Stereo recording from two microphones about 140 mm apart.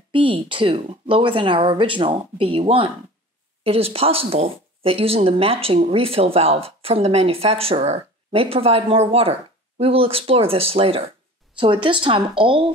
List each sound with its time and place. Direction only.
0.1 s speech: 35° right (ahead or behind)